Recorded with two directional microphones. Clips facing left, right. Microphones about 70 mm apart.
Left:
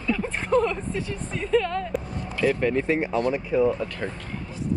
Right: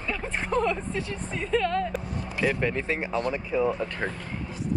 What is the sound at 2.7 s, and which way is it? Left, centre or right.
Speech, left.